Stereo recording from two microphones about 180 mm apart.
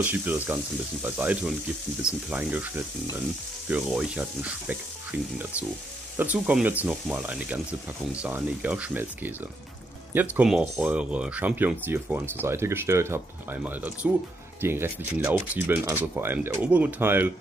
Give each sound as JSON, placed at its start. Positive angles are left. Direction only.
{"t": 0.0, "sound": "speech", "side_deg": -10}